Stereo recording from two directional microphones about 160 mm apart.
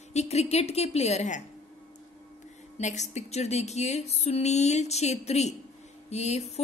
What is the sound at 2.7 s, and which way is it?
A woman's voice, 45° left (ahead or behind).